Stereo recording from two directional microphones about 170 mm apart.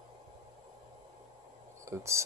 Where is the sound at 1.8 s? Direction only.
15° right (ahead or behind).